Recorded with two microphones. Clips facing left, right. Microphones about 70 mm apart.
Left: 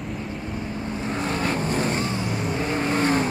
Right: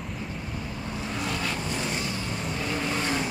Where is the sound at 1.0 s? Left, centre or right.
Left.